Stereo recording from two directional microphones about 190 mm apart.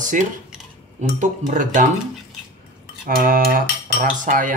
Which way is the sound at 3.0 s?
50° right (ahead or behind).